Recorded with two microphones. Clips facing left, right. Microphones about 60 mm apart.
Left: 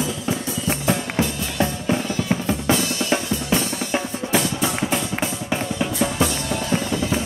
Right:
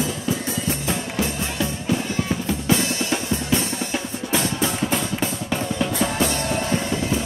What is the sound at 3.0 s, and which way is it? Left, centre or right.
Drum, left.